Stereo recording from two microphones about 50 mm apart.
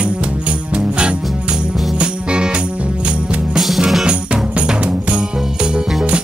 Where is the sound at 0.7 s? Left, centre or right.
Centre.